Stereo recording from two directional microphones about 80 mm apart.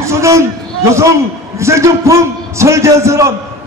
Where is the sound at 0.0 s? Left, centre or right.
Right.